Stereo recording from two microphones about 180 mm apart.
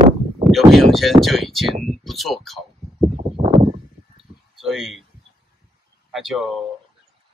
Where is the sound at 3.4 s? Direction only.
35° right (ahead or behind).